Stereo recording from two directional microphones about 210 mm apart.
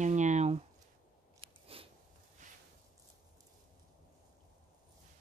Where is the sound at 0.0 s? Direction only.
35° right (ahead or behind).